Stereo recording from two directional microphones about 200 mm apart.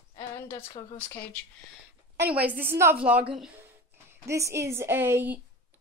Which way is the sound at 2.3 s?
10° right (ahead or behind).